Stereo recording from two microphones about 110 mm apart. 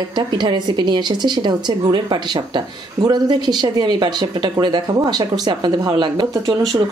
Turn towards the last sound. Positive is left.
turn(degrees=-35)  # may be behind; listen again after turning